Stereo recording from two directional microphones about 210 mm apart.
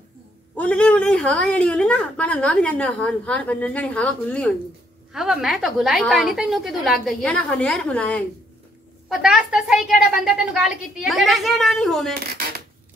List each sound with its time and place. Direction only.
0.6 s a woman's voice: 5° left (ahead or behind)
12.1 s speech: 45° right (ahead or behind)